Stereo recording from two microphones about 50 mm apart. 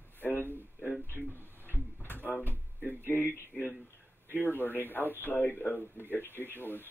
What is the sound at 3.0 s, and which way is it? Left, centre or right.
Speech, left.